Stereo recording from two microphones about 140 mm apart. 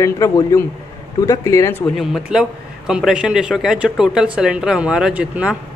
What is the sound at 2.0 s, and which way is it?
Speech, 5° right (ahead or behind).